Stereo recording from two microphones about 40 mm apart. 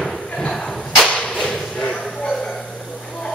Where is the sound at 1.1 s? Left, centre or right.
Left.